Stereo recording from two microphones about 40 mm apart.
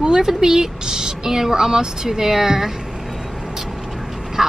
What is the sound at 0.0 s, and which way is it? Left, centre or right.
Speech, centre.